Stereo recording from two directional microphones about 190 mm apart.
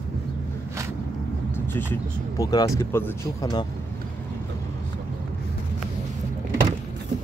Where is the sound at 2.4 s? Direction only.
20° left (ahead or behind).